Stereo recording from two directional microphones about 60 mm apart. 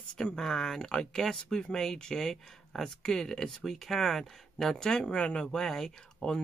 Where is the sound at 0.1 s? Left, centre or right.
Centre.